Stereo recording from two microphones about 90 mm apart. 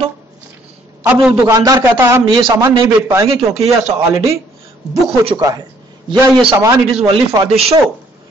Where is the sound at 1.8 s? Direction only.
25° right (ahead or behind).